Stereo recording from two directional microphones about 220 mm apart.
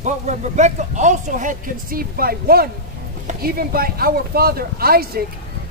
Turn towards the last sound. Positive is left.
turn(degrees=-45)  # may be behind; listen again after turning